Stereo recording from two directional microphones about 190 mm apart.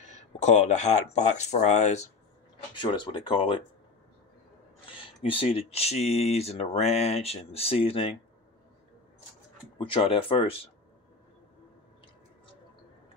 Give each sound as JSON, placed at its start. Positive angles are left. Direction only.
{"t": 0.0, "sound": "speech", "side_deg": 40}
{"t": 2.7, "sound": "speech", "side_deg": 25}
{"t": 4.9, "sound": "speech", "side_deg": 30}
{"t": 9.8, "sound": "speech", "side_deg": 25}